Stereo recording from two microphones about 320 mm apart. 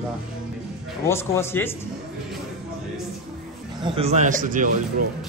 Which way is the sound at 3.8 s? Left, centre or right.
Centre.